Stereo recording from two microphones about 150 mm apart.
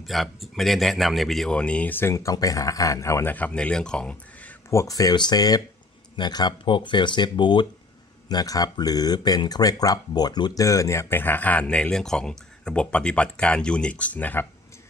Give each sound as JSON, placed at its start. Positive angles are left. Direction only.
{"t": 0.0, "sound": "speech", "side_deg": 0}